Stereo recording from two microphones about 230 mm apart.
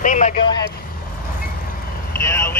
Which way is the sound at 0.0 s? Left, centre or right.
Left.